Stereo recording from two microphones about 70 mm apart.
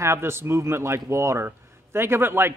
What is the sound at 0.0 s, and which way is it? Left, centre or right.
Speech, right.